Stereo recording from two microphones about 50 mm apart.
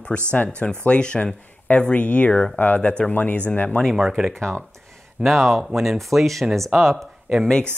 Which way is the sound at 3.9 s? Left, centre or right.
Centre.